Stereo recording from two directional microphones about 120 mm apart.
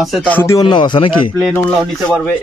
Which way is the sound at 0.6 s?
40° left (ahead or behind).